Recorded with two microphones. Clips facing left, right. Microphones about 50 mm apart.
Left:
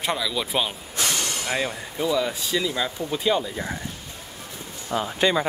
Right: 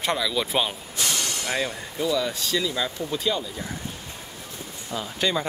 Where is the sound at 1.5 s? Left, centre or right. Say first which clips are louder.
Left 1 dB; centre.